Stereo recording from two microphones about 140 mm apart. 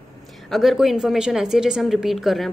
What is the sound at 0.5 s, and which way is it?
Speech, centre (ahead or behind).